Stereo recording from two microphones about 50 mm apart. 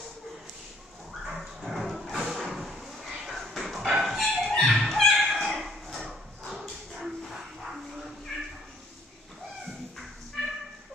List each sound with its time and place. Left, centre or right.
1.2 s dog: centre
2.7 s chicken: centre
4.9 s cat: centre
6.5 s dog: centre
10.4 s a sound: centre